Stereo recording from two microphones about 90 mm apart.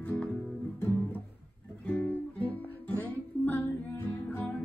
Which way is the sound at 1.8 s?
20° left (ahead or behind).